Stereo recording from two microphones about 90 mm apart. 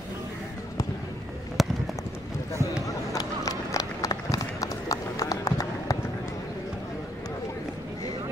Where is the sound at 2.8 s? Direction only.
40° left (ahead or behind).